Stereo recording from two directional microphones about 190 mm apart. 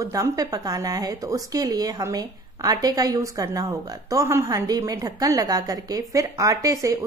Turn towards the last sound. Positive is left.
turn(degrees=-15)  # may be behind; listen again after turning